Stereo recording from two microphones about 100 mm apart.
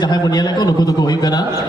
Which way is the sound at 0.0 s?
45° left (ahead or behind).